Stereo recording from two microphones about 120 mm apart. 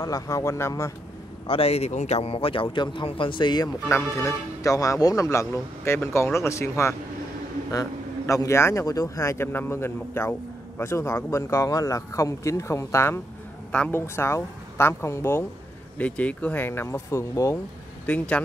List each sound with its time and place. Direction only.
0.0 s speech: 30° left (ahead or behind)
1.5 s speech: 55° left (ahead or behind); by 3.7 s 35° left (ahead or behind)
3.9 s speech: 25° left (ahead or behind)
8.3 s speech: 25° left (ahead or behind)
13.7 s speech: 10° left (ahead or behind)
18.0 s speech: 10° left (ahead or behind)